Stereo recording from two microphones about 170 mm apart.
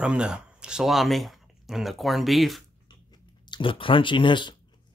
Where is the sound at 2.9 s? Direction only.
25° left (ahead or behind).